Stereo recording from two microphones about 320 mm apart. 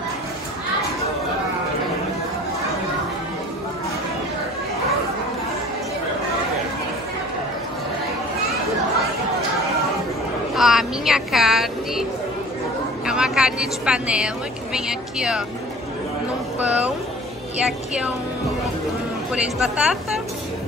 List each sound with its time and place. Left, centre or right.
10.5 s a sound: centre
13.0 s speech: centre
16.5 s speech: centre
19.3 s speech: centre